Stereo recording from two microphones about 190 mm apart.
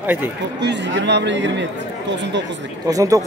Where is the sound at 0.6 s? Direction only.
70° right (ahead or behind).